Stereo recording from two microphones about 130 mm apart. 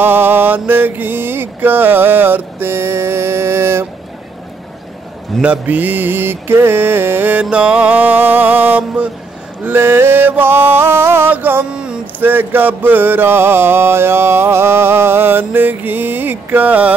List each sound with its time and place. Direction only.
0.0 s music: 15° right (ahead or behind)
5.4 s music: 10° right (ahead or behind)